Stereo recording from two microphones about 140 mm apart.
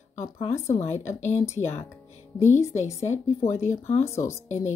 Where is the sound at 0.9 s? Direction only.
55° left (ahead or behind).